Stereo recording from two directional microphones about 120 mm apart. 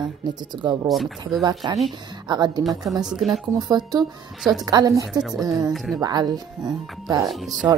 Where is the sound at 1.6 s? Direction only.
40° right (ahead or behind).